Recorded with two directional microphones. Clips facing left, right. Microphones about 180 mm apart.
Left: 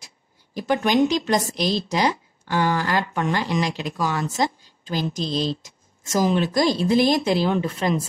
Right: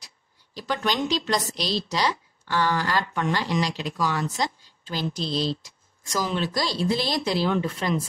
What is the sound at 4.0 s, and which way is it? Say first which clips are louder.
Speech: left 3 dB; 45° left (ahead or behind).